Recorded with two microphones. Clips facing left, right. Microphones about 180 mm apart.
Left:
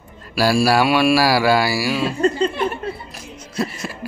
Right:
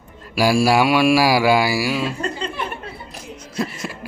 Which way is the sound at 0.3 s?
15° right (ahead or behind).